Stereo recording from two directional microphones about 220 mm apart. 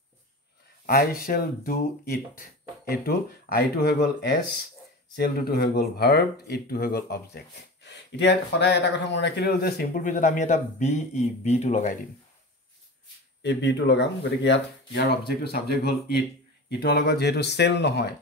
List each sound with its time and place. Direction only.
0.8 s speech: 45° left (ahead or behind)
13.4 s speech: 50° left (ahead or behind)